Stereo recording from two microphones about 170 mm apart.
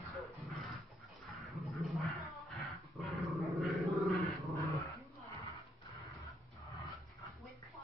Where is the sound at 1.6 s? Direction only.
35° right (ahead or behind).